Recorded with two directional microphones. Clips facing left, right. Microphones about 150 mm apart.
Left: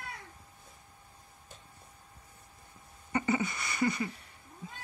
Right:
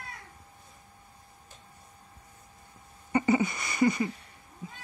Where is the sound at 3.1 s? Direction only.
15° right (ahead or behind).